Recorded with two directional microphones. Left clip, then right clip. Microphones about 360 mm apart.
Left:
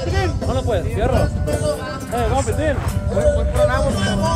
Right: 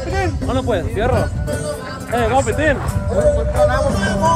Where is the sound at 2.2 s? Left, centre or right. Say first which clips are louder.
Right 5 dB; right.